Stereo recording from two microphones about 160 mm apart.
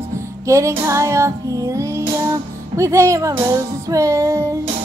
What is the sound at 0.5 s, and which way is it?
Music, 20° right (ahead or behind).